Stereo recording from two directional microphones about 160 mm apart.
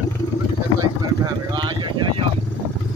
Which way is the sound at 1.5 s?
30° right (ahead or behind).